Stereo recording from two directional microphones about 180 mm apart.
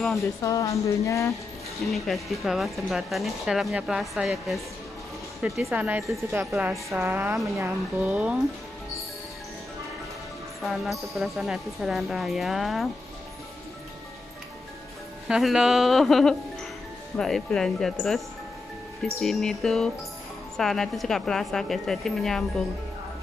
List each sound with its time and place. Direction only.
0.4 s speech: 20° left (ahead or behind)
1.9 s speech: centre (ahead or behind)
10.6 s speech: centre (ahead or behind)
15.2 s speech: 5° right (ahead or behind)